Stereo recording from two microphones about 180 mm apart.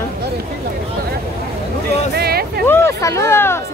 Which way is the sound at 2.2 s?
60° right (ahead or behind).